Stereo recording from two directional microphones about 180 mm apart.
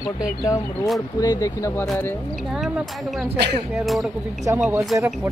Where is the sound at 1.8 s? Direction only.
Centre (ahead or behind).